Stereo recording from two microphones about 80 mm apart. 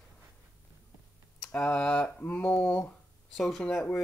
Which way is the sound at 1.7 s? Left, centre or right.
Centre.